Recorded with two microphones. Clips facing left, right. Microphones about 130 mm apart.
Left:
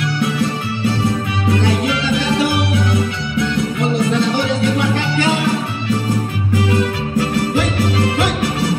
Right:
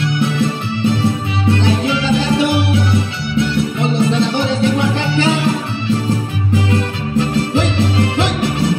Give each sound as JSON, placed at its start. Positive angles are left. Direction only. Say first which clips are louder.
{"t": 0.2, "sound": "music", "louder": "even", "side_deg": -25}